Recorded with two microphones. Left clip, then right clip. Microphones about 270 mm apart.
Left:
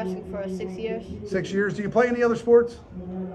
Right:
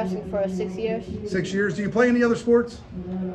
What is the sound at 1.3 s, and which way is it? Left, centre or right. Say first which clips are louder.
A man's voice: even; centre.